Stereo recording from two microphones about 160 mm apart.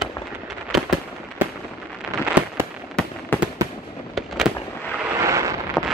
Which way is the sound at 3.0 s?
5° left (ahead or behind).